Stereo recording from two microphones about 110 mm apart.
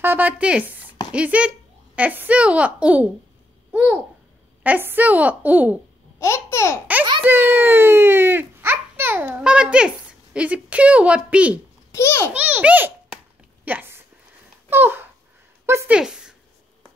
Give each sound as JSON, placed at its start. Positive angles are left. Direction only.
{"t": 0.0, "sound": "speech", "side_deg": -20}
{"t": 6.1, "sound": "speech", "side_deg": 25}
{"t": 7.2, "sound": "a child's voice", "side_deg": -20}
{"t": 11.9, "sound": "a child's voice", "side_deg": 25}
{"t": 12.4, "sound": "a child's voice", "side_deg": -15}
{"t": 13.7, "sound": "a sound", "side_deg": -20}
{"t": 15.9, "sound": "speech", "side_deg": -5}